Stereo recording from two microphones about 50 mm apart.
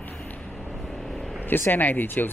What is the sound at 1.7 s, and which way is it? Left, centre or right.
Speech, left.